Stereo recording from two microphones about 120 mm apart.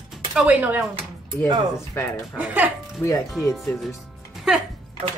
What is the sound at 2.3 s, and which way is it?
Speech, 10° right (ahead or behind).